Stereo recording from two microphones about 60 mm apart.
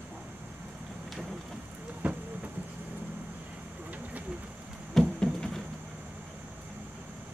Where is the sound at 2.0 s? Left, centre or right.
Right.